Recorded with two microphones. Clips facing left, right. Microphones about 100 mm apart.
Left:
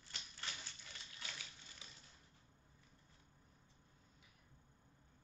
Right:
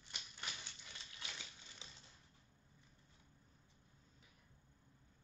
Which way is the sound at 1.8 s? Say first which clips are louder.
Right 2 dB; 25° right (ahead or behind).